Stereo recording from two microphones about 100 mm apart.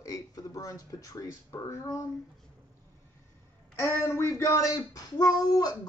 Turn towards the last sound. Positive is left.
turn(degrees=40)  # may be behind; listen again after turning